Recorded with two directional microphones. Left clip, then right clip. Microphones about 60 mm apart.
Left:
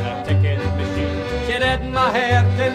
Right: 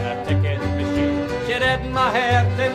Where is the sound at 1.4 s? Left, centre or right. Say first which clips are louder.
Left 1 dB; left.